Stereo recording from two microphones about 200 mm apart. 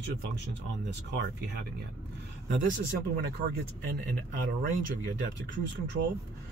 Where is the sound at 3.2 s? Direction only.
50° right (ahead or behind).